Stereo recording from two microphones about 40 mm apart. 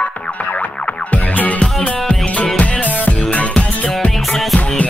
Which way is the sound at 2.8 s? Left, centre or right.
Left.